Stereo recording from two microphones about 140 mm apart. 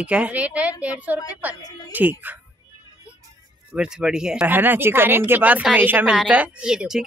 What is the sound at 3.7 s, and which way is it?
Speech, 5° right (ahead or behind).